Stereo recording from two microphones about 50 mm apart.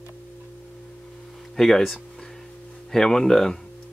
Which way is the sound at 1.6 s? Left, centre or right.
Centre.